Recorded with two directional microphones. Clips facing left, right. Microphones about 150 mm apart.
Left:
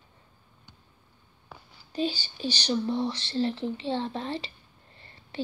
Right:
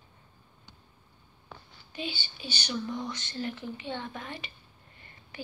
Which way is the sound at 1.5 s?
5° left (ahead or behind).